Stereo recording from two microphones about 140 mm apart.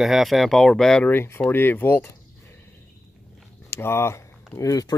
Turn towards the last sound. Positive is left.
turn(degrees=25)  # may be behind; listen again after turning